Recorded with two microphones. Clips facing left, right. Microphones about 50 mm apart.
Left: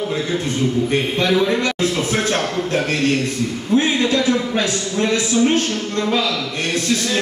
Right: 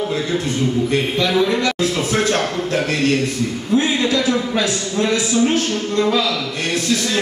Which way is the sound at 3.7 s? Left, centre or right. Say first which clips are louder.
Left 1 dB; left.